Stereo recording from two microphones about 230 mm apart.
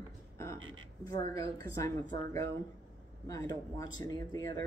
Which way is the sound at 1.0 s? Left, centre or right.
Centre.